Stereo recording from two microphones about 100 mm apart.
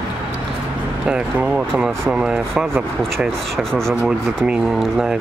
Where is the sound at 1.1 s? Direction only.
10° right (ahead or behind).